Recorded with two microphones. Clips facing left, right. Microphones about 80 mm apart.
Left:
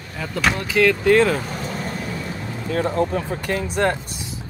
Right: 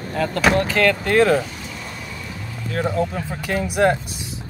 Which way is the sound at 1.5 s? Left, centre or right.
Left.